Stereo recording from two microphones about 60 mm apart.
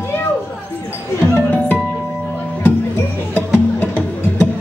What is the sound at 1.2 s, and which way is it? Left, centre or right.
Music, left.